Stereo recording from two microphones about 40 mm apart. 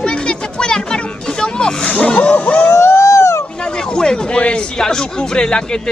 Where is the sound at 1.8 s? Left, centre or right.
Left.